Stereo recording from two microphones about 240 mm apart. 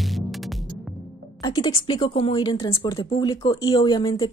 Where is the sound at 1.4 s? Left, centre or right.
Centre.